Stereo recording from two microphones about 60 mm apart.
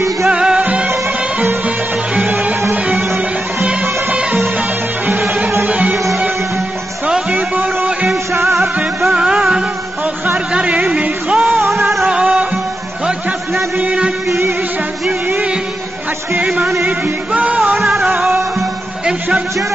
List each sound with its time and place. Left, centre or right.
0.3 s music: centre
2.2 s music: right
5.7 s music: right
7.1 s a sound: centre
9.1 s music: centre
13.7 s a sound: centre
16.8 s music: right
18.0 s music: centre